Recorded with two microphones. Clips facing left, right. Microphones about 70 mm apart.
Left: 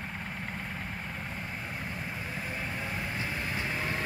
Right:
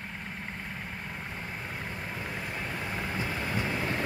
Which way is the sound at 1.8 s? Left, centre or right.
Right.